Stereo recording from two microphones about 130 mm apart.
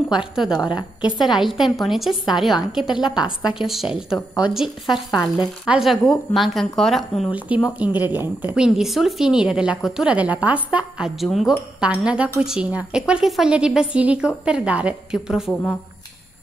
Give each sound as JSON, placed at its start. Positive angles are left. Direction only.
{"t": 0.4, "sound": "a woman's voice", "side_deg": -5}
{"t": 0.7, "sound": "a woman's voice", "side_deg": 35}
{"t": 1.2, "sound": "a woman's voice", "side_deg": 0}
{"t": 7.3, "sound": "a woman's voice", "side_deg": -10}